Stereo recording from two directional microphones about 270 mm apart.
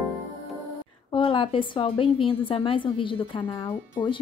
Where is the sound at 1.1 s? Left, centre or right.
Centre.